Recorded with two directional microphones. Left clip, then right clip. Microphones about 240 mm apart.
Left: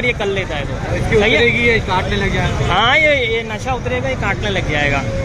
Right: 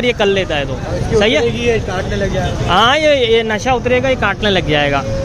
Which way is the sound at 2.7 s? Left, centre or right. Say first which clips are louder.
Right 2 dB; right.